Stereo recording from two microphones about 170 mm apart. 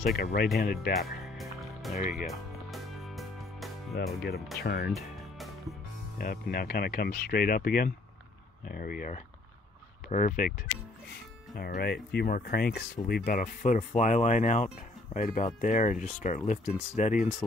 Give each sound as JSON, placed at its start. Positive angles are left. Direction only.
{"t": 0.0, "sound": "speech", "side_deg": 65}
{"t": 0.9, "sound": "music", "side_deg": 0}
{"t": 4.6, "sound": "speech", "side_deg": 70}
{"t": 4.9, "sound": "music", "side_deg": 0}
{"t": 6.1, "sound": "speech", "side_deg": 60}
{"t": 11.5, "sound": "speech", "side_deg": 65}